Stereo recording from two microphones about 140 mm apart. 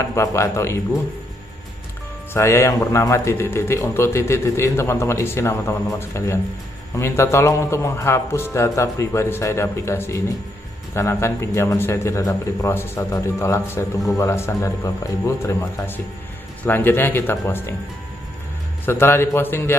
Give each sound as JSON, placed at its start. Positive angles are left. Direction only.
{"t": 0.0, "sound": "speech", "side_deg": 20}
{"t": 2.3, "sound": "speech", "side_deg": 20}
{"t": 18.9, "sound": "speech", "side_deg": 15}